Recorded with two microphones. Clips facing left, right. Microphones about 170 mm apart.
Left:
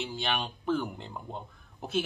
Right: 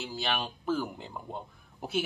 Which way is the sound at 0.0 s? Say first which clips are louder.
Left 1 dB; centre (ahead or behind).